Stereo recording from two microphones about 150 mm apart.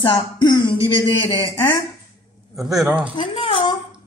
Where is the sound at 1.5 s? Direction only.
15° left (ahead or behind).